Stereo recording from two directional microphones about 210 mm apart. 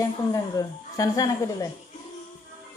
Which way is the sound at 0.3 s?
15° left (ahead or behind).